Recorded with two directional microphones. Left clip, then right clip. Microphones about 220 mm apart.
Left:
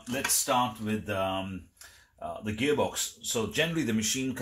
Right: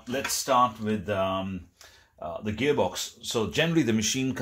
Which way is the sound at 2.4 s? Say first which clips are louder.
Right 2 dB; 35° right (ahead or behind).